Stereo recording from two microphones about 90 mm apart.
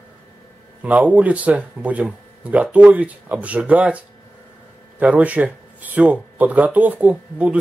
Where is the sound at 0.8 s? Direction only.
15° right (ahead or behind).